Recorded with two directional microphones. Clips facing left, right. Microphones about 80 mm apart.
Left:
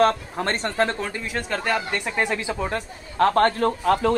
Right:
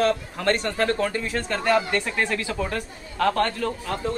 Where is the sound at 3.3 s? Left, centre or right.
Left.